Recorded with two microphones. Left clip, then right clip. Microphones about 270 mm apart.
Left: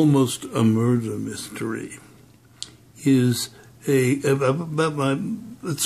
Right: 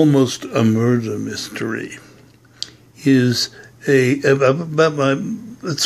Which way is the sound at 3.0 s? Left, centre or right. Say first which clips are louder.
Right 5 dB; centre.